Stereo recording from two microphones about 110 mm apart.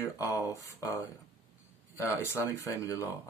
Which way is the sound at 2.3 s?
25° left (ahead or behind).